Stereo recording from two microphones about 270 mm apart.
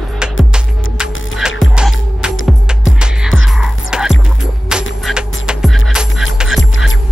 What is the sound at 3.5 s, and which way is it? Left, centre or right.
Music, centre.